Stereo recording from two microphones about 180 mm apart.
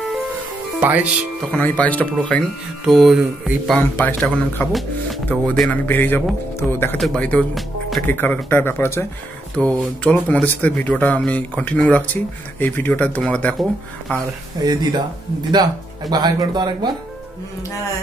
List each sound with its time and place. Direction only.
0.7 s speech: 10° right (ahead or behind)
1.5 s speech: 10° left (ahead or behind)
3.7 s speech: 10° left (ahead or behind)
10.0 s speech: 10° left (ahead or behind)
14.1 s speech: 20° right (ahead or behind)
16.1 s speech: 20° right (ahead or behind)